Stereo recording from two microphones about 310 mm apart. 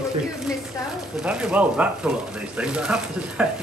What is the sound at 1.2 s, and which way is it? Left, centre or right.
Speech, centre.